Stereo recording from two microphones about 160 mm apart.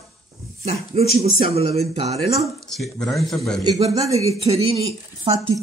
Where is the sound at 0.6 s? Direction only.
40° right (ahead or behind).